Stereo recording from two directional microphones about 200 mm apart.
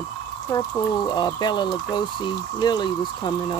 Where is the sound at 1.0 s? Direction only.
20° left (ahead or behind).